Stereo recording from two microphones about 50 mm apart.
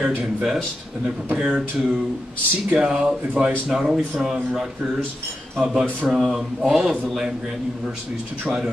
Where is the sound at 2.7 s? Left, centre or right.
Centre.